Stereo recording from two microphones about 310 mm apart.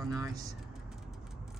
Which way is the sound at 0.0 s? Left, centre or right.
Centre.